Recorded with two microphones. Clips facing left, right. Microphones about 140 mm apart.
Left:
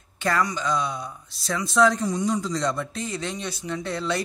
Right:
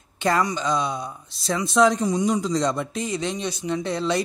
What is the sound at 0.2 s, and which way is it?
Speech, 20° right (ahead or behind).